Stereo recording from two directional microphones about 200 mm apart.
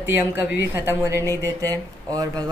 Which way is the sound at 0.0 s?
10° right (ahead or behind).